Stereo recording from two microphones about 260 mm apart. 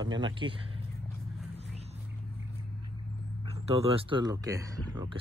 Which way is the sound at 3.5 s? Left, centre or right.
Right.